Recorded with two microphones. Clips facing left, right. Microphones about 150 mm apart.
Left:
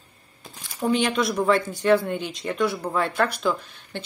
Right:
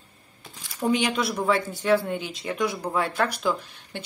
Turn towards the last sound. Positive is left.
turn(degrees=-10)  # may be behind; listen again after turning